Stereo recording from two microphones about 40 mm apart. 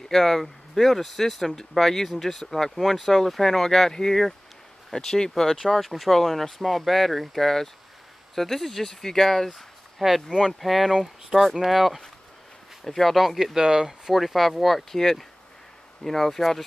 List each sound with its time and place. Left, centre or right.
0.1 s speech: centre
9.6 s a sound: centre
10.6 s speech: centre
10.9 s speech: centre
11.7 s speech: centre
13.6 s speech: centre
14.1 s speech: centre